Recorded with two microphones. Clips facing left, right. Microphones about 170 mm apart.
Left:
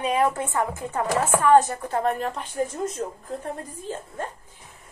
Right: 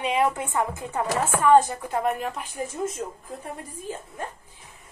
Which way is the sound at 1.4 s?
20° right (ahead or behind).